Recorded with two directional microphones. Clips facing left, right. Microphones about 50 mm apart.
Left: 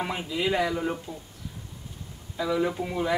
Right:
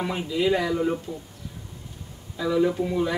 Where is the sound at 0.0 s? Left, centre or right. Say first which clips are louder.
Right 4 dB; centre.